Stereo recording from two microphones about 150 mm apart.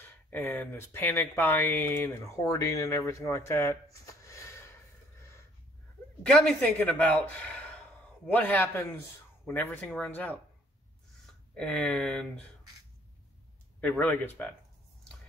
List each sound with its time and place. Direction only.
0.0 s speech: 15° left (ahead or behind)
6.2 s speech: 5° left (ahead or behind)
11.5 s speech: 5° left (ahead or behind)
13.7 s speech: 10° left (ahead or behind)